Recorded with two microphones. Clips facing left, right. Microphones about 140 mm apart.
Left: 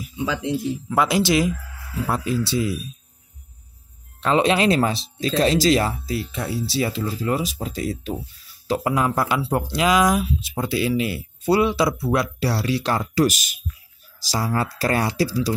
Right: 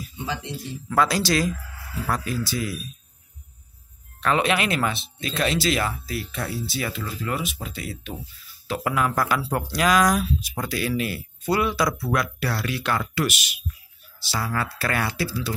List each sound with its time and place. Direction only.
0.8 s speech: 20° left (ahead or behind)
4.2 s speech: 25° left (ahead or behind)